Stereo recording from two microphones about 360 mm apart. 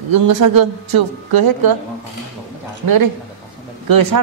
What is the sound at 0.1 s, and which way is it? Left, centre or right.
A woman's voice, right.